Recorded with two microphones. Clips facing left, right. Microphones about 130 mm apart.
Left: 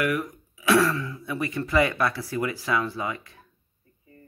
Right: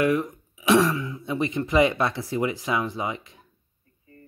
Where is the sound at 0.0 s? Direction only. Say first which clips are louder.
Right 4 dB; 25° right (ahead or behind).